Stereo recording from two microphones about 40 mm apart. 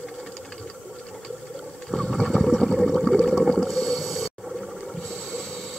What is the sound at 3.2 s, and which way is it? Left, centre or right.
Whale vocalization, centre.